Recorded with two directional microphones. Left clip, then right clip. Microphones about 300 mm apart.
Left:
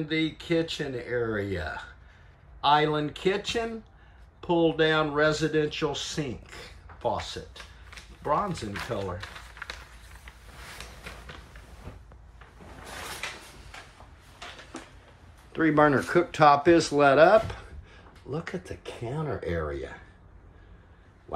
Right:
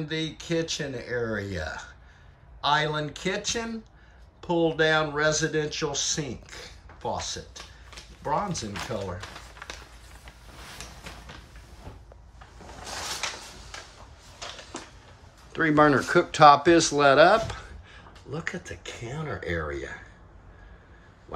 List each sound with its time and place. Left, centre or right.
0.1 s speech: centre
9.3 s a sound: centre
15.5 s speech: centre